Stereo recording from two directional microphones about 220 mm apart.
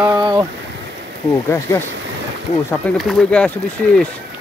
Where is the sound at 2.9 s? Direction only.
5° left (ahead or behind).